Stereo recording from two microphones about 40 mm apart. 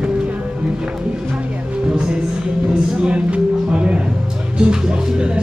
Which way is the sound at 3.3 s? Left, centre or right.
Right.